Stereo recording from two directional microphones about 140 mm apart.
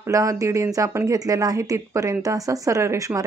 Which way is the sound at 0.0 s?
25° right (ahead or behind).